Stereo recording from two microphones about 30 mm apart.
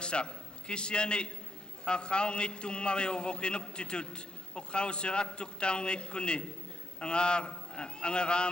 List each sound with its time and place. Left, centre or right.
0.0 s a man's voice: left